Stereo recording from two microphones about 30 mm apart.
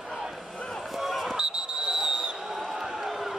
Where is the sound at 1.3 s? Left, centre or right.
Right.